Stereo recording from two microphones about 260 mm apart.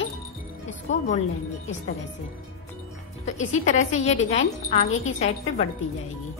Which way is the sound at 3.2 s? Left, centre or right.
Left.